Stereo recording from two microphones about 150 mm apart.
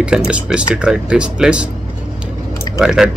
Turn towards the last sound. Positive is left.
turn(degrees=-5)  # may be behind; listen again after turning